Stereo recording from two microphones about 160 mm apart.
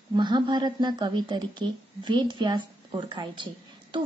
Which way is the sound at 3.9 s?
30° right (ahead or behind).